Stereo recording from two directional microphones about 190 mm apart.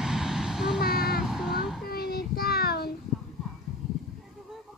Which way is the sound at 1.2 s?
Centre (ahead or behind).